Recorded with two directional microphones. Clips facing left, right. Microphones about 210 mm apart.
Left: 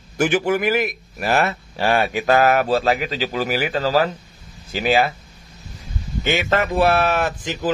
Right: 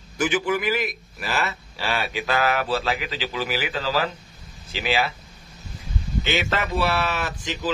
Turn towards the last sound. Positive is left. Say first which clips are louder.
# left 6 dB
turn(degrees=50)  # may be behind; listen again after turning